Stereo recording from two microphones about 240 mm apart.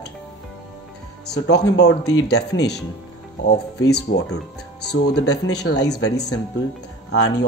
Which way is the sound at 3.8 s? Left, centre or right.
Left.